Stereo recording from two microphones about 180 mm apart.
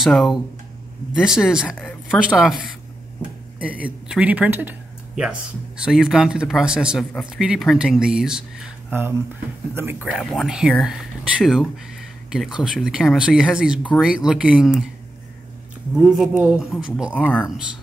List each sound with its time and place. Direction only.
0.0 s speech: centre (ahead or behind)
9.8 s speech: 10° right (ahead or behind)
15.9 s speech: 5° right (ahead or behind)
17.2 s speech: 10° left (ahead or behind)